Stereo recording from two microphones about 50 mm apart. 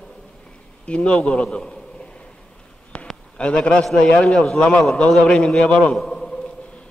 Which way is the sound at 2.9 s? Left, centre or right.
Left.